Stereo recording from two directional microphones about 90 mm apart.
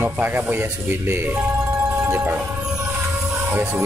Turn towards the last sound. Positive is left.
turn(degrees=-20)  # may be behind; listen again after turning